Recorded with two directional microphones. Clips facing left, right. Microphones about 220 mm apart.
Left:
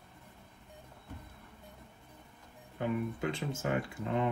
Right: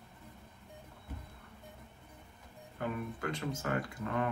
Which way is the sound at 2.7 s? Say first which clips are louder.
Left 4 dB; 20° left (ahead or behind).